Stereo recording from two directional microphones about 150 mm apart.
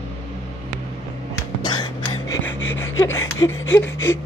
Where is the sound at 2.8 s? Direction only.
15° left (ahead or behind).